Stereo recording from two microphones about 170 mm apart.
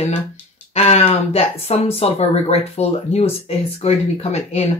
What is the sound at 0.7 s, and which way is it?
Speech, 40° left (ahead or behind).